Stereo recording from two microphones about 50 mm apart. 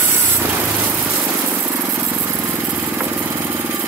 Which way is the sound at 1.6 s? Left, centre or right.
Right.